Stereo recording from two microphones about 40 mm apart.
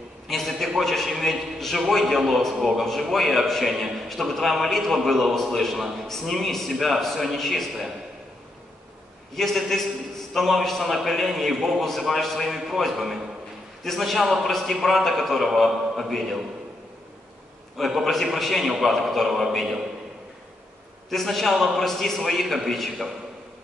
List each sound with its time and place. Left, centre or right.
0.3 s a man's voice: centre
9.3 s a man's voice: centre
17.7 s a man's voice: centre
21.1 s a man's voice: centre